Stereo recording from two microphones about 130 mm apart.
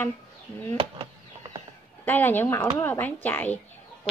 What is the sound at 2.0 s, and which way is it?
A woman's voice, 15° left (ahead or behind).